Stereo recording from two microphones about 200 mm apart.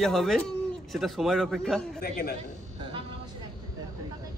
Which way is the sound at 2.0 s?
50° left (ahead or behind).